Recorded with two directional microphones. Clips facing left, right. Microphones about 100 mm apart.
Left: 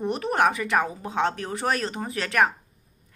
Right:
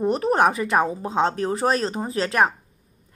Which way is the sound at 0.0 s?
35° right (ahead or behind).